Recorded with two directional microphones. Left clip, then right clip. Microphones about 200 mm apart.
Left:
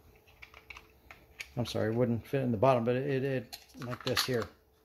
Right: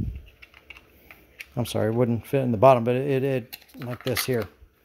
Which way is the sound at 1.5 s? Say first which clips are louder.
Right 7 dB; 35° right (ahead or behind).